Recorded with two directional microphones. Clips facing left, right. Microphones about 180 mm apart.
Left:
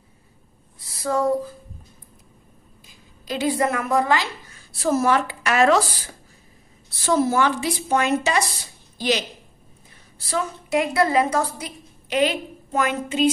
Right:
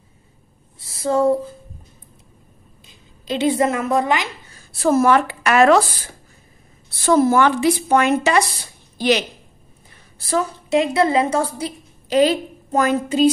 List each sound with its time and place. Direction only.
0.7 s speech: 25° right (ahead or behind)
2.9 s a woman's voice: 25° right (ahead or behind)
4.8 s a woman's voice: 60° right (ahead or behind)
7.1 s a woman's voice: 55° right (ahead or behind)
8.9 s a sound: 65° right (ahead or behind)
10.7 s a woman's voice: 25° right (ahead or behind)